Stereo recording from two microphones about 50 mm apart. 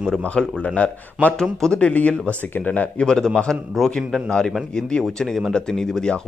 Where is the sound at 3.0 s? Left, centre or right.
Centre.